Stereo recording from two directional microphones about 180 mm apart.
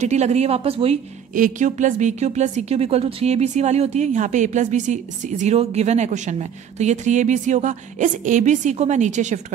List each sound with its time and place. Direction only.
0.0 s a woman's voice: 40° right (ahead or behind)
1.3 s a woman's voice: 45° right (ahead or behind)